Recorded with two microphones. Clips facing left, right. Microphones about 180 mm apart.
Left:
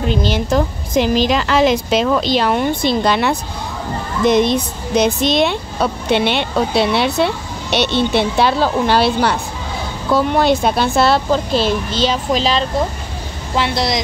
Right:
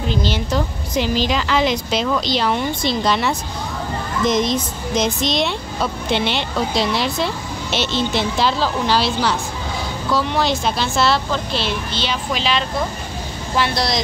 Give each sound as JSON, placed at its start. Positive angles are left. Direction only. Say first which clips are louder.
{"t": 0.3, "sound": "a woman's voice", "louder": "left 5 dB", "side_deg": 50}
{"t": 13.6, "sound": "speech", "louder": "left 2 dB", "side_deg": 20}